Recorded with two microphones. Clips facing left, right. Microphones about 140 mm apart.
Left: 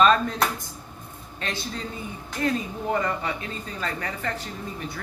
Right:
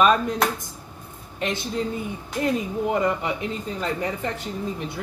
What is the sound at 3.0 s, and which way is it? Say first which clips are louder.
Speech: right 4 dB; 20° right (ahead or behind).